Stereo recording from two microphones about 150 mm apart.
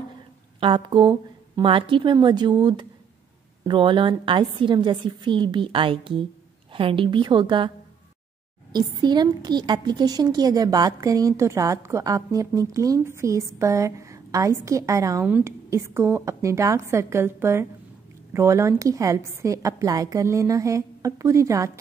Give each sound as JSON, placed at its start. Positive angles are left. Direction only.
{"t": 0.6, "sound": "a woman's voice", "side_deg": -35}
{"t": 8.7, "sound": "a woman's voice", "side_deg": -30}